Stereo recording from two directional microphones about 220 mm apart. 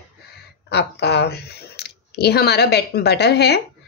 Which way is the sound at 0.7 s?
50° left (ahead or behind).